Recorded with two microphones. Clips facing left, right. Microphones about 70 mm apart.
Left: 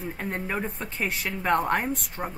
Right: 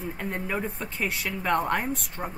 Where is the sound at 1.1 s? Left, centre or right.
Centre.